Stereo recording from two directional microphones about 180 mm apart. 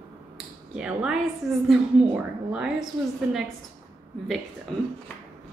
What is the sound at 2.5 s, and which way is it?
Speech, 5° right (ahead or behind).